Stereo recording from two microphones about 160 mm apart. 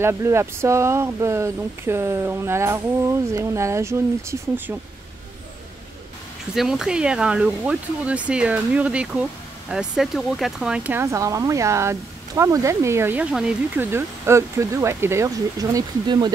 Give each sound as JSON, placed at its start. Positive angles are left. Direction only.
{"t": 0.0, "sound": "speech", "side_deg": -15}
{"t": 6.5, "sound": "speech", "side_deg": 0}